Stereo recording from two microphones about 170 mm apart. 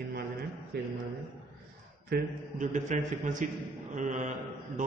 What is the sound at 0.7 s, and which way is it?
Speech, 75° right (ahead or behind).